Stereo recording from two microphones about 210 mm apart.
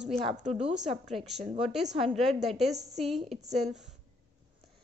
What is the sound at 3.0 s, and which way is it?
Speech, centre (ahead or behind).